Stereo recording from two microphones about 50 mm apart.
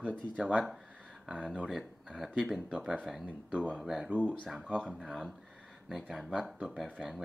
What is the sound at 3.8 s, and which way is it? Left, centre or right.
Speech, centre.